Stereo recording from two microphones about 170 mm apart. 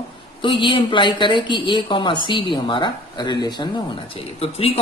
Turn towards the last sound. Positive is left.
turn(degrees=35)  # may be behind; listen again after turning